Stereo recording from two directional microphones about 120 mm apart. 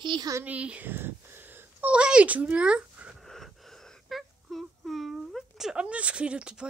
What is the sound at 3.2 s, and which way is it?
Wail, 5° left (ahead or behind).